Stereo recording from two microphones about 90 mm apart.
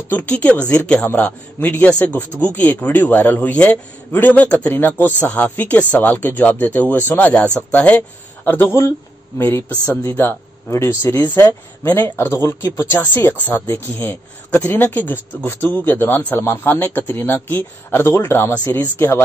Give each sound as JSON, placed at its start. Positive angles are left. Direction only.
{"t": 0.1, "sound": "speech", "side_deg": 20}